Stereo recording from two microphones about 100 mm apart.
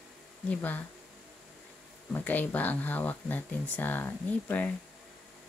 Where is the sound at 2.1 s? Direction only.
20° left (ahead or behind).